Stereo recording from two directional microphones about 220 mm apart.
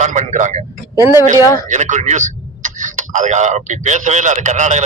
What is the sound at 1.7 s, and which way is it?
Speech, 35° right (ahead or behind).